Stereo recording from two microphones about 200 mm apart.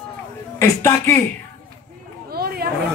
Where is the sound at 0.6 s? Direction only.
15° left (ahead or behind).